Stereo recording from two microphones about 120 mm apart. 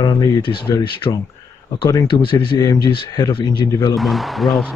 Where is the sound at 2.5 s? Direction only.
30° left (ahead or behind).